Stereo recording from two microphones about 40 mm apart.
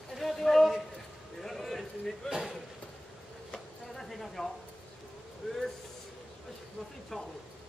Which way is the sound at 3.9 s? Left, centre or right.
Centre.